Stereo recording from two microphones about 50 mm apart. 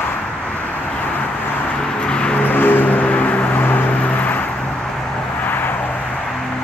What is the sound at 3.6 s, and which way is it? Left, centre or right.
Vehicle, left.